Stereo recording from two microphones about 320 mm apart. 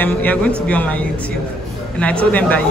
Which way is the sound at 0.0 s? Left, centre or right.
Centre.